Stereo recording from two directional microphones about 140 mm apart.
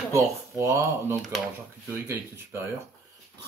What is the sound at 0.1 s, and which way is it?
Speech, 20° right (ahead or behind).